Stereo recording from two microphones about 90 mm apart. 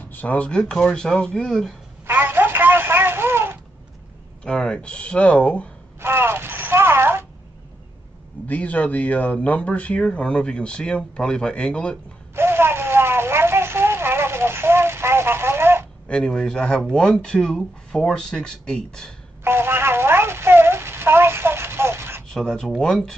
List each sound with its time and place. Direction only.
0.1 s speech: 15° left (ahead or behind)
2.0 s telephone: 25° right (ahead or behind)
4.4 s speech: 10° left (ahead or behind)
5.9 s a sound: 25° right (ahead or behind)
8.5 s speech: 15° left (ahead or behind)
12.4 s a sound: 25° right (ahead or behind)
16.1 s speech: 10° left (ahead or behind)
19.4 s a sound: 25° right (ahead or behind)
22.3 s speech: 5° left (ahead or behind)